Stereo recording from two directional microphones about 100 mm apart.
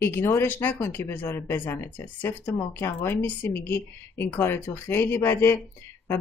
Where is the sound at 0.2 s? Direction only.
25° left (ahead or behind).